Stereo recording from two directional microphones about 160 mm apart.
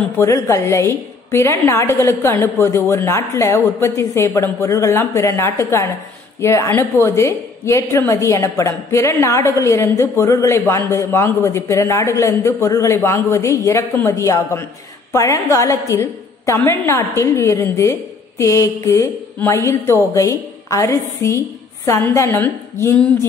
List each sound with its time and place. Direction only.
0.2 s a woman's voice: 20° left (ahead or behind)